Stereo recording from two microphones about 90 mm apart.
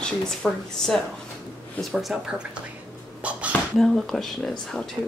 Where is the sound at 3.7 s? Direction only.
Centre (ahead or behind).